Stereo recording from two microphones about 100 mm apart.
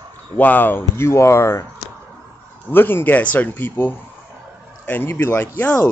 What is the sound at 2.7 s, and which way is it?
Speech, 20° left (ahead or behind).